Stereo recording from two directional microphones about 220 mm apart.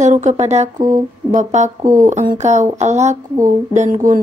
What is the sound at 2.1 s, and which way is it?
Speech, 35° right (ahead or behind).